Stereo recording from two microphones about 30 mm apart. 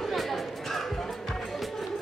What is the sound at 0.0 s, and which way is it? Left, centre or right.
Chatter, centre.